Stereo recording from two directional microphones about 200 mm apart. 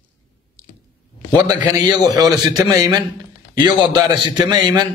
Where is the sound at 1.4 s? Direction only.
20° right (ahead or behind).